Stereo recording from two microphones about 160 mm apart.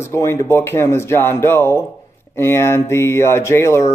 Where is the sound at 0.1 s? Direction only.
15° left (ahead or behind).